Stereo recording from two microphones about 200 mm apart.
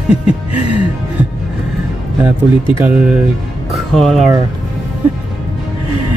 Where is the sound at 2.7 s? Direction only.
5° right (ahead or behind).